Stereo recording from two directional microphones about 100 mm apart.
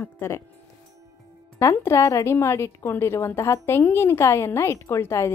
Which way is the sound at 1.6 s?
30° left (ahead or behind).